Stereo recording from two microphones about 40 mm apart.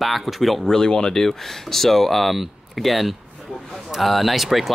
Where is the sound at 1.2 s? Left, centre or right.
Centre.